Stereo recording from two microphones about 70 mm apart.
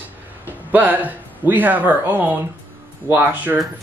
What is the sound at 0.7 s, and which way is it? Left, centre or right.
A man's voice, right.